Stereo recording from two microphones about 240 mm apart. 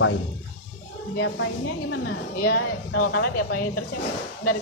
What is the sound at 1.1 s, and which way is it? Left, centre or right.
A woman's voice, left.